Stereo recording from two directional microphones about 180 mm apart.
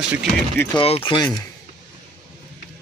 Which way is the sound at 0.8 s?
30° left (ahead or behind).